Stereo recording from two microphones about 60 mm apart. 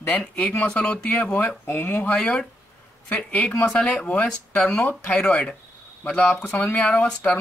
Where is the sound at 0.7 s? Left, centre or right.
Left.